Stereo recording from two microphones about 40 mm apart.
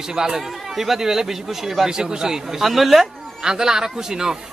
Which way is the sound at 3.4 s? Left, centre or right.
Centre.